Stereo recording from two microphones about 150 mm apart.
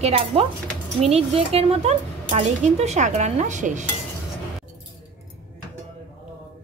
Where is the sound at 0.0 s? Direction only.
40° right (ahead or behind).